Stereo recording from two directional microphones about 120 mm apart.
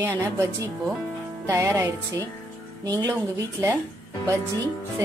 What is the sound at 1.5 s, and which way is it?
Speech, 25° right (ahead or behind).